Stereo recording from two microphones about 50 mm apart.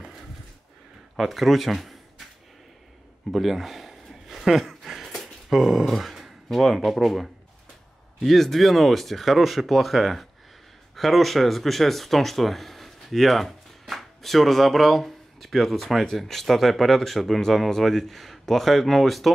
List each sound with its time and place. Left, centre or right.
1.1 s speech: centre
3.3 s a sound: centre
5.9 s speech: centre